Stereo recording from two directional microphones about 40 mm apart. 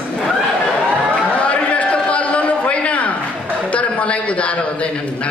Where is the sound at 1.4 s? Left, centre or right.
Left.